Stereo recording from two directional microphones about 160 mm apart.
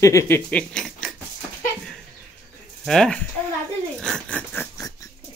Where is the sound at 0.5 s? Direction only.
5° left (ahead or behind).